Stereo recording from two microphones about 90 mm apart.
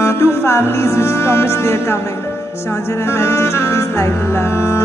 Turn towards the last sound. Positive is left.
turn(degrees=30)  # may be behind; listen again after turning